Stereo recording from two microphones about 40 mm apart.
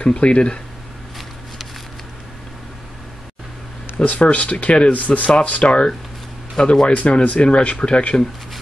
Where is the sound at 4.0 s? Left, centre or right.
Left.